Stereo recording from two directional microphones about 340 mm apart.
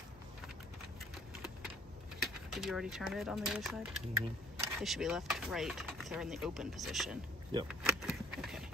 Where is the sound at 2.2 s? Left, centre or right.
Centre.